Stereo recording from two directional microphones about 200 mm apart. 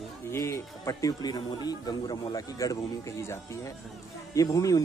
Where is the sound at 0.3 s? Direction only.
15° left (ahead or behind).